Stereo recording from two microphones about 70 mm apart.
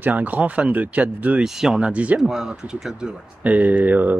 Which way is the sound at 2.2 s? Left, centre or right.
Centre.